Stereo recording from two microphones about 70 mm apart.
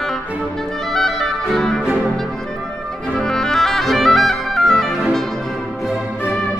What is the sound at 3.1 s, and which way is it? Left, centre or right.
Music, centre.